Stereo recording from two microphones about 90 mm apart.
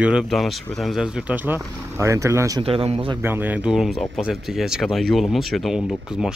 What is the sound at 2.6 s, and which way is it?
Speech, 90° right.